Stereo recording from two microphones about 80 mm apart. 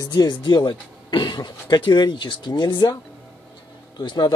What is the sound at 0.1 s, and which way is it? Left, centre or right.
Speech, left.